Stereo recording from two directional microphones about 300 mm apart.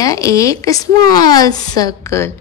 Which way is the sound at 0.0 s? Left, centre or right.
Centre.